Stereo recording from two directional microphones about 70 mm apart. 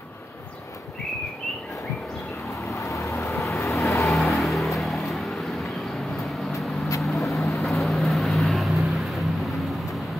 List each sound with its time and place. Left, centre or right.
2.7 s vehicle: left
4.1 s vehicle: centre
7.0 s vehicle: centre